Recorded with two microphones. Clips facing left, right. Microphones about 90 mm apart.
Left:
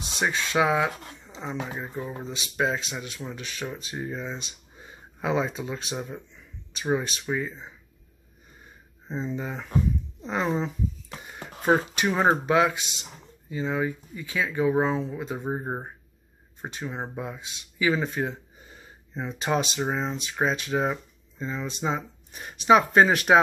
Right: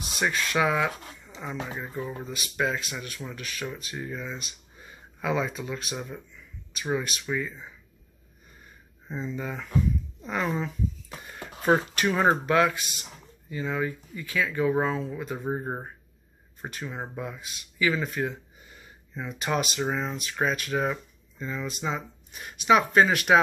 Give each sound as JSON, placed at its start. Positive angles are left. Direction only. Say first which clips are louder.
{"t": 0.0, "sound": "speech", "louder": "even", "side_deg": 25}
{"t": 2.2, "sound": "speech", "louder": "left 3 dB", "side_deg": 25}
{"t": 9.0, "sound": "speech", "louder": "left 2 dB", "side_deg": 25}